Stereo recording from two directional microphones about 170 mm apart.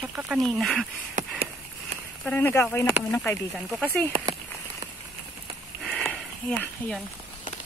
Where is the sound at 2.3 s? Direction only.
10° left (ahead or behind).